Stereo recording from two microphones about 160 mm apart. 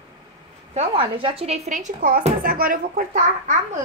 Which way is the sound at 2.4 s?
60° right (ahead or behind).